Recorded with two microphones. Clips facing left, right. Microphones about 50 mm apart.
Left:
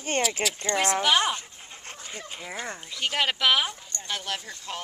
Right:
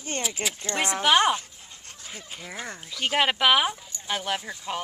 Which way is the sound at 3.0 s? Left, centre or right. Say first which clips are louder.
Right 3 dB; centre.